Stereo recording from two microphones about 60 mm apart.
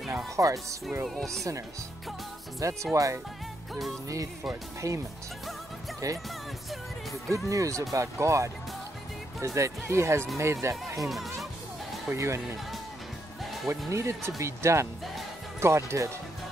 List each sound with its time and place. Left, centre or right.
0.4 s speech: right
1.0 s speech: centre
2.6 s speech: right
4.8 s speech: right
6.0 s speech: right
6.7 s music: centre
7.3 s speech: right
11.0 s speech: centre
12.1 s speech: right
13.8 s speech: right